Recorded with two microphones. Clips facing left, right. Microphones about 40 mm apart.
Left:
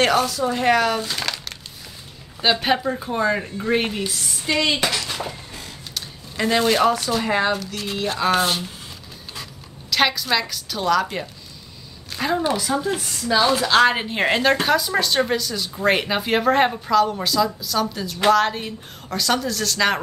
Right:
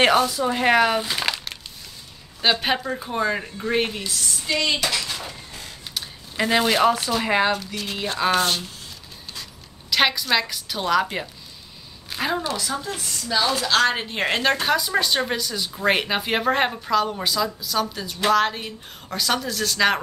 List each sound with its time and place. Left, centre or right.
0.3 s speech: centre
2.6 s speech: centre
4.0 s speech: centre
5.9 s speech: centre
7.5 s speech: centre
9.8 s a woman's voice: centre
12.1 s a sound: centre
12.5 s speech: centre